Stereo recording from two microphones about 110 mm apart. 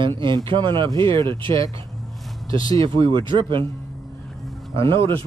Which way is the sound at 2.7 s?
55° right (ahead or behind).